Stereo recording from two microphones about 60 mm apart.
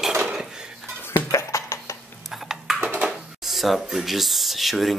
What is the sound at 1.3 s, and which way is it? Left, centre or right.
Music, left.